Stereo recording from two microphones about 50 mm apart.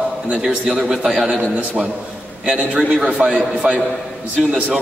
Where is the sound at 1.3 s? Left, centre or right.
Right.